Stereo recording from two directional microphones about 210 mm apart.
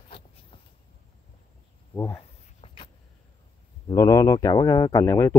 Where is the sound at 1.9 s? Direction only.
10° left (ahead or behind).